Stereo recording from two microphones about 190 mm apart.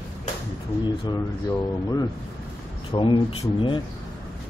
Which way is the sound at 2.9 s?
25° left (ahead or behind).